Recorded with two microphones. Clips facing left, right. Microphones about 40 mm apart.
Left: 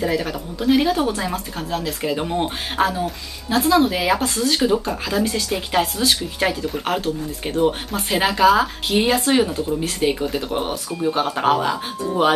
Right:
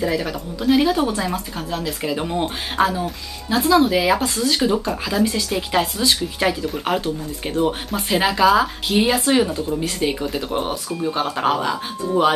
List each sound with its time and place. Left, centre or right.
0.0 s speech: centre